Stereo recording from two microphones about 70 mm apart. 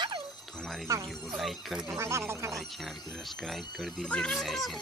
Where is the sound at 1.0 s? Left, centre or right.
Centre.